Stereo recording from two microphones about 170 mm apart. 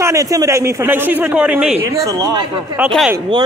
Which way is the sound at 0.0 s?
20° right (ahead or behind).